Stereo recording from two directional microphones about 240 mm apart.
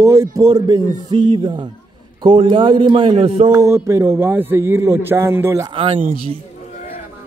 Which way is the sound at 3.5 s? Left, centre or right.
Centre.